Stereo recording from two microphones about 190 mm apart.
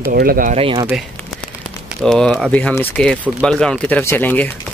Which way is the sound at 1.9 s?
5° left (ahead or behind).